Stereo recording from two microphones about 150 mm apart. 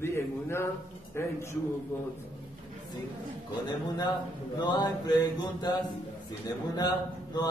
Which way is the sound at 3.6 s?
25° left (ahead or behind).